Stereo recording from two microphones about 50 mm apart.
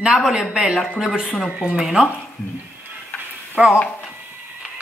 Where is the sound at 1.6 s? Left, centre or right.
Centre.